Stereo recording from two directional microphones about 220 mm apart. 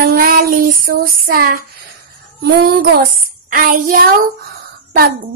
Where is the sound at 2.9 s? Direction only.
40° right (ahead or behind).